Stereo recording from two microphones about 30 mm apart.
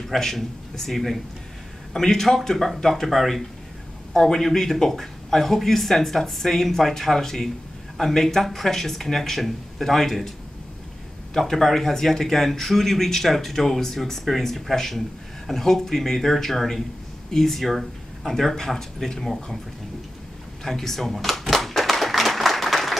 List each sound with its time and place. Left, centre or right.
0.2 s speech: centre
2.0 s speech: centre
4.1 s speech: centre
11.3 s speech: centre
18.5 s speech: centre
20.6 s a sound: centre